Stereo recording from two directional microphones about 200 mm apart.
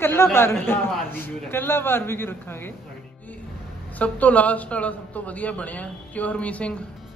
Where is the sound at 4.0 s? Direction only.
5° left (ahead or behind).